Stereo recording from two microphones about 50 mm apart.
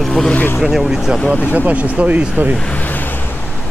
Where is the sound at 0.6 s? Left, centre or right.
Centre.